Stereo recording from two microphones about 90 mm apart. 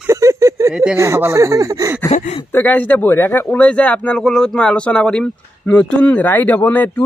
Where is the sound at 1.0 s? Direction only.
30° right (ahead or behind).